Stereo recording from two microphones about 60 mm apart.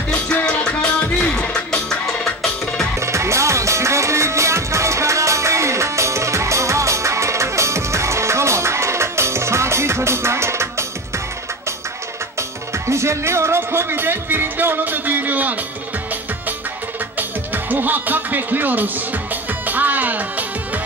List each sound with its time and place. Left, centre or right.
0.3 s music: centre
3.0 s music: right
12.4 s music: right
17.2 s music: right